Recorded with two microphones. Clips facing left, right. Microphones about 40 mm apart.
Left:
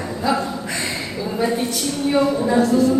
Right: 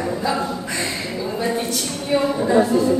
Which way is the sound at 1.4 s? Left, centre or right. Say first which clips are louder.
Left 3 dB; centre.